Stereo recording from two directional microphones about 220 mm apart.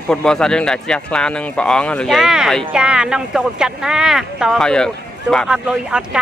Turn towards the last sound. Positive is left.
turn(degrees=-5)  # may be behind; listen again after turning